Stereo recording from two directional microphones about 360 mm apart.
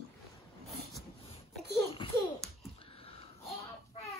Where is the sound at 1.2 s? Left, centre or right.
Centre.